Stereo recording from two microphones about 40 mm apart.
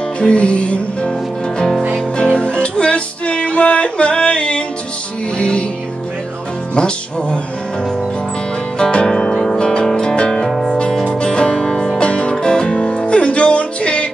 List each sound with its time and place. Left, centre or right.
0.2 s music: left
2.2 s music: left
6.7 s music: left
8.7 s music: centre
10.4 s music: centre
11.1 s music: left